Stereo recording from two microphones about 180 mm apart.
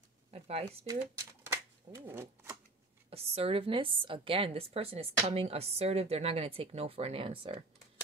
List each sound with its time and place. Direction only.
0.3 s speech: 35° right (ahead or behind)
0.8 s speech: 15° right (ahead or behind)
3.1 s a woman's voice: 35° right (ahead or behind)